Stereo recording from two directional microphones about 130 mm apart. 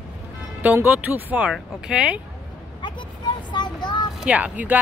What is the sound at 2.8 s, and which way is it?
Vehicle, 35° left (ahead or behind).